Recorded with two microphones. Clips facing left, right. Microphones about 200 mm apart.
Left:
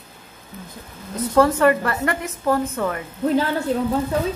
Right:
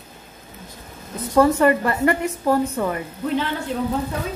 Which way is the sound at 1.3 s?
10° right (ahead or behind).